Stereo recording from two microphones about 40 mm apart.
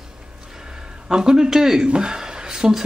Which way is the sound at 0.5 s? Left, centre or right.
Centre.